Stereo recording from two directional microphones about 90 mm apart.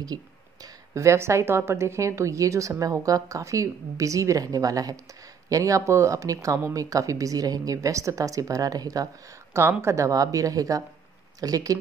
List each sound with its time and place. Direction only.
0.0 s a woman's voice: 45° right (ahead or behind)
9.5 s a woman's voice: 30° right (ahead or behind)